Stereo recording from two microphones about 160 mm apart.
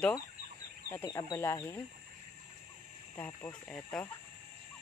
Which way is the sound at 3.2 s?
10° left (ahead or behind).